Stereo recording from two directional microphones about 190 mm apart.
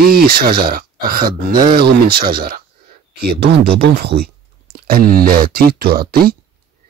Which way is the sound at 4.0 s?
55° right (ahead or behind).